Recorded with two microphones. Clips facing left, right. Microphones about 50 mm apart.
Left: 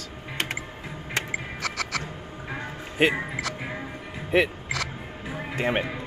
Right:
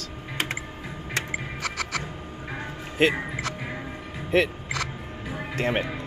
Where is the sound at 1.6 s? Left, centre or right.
Right.